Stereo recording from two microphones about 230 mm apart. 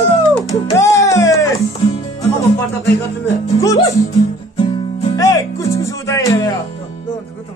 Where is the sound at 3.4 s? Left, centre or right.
Centre.